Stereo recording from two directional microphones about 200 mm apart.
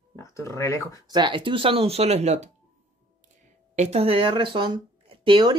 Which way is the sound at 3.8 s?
30° right (ahead or behind).